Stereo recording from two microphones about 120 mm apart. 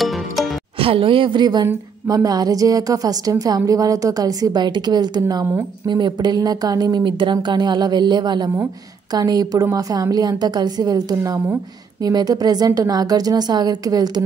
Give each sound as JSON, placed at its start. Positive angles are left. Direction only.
{"t": 0.0, "sound": "music", "side_deg": 0}
{"t": 0.7, "sound": "a woman's voice", "side_deg": -50}